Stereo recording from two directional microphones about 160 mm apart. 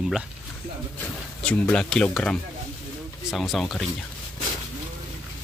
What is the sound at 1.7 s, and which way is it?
Speech, 5° left (ahead or behind).